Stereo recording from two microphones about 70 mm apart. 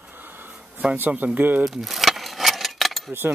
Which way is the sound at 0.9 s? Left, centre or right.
Right.